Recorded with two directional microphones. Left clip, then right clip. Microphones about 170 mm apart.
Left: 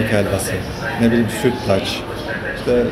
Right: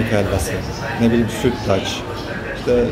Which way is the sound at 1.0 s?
Centre (ahead or behind).